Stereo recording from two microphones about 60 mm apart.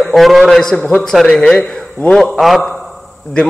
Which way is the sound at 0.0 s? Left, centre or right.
Centre.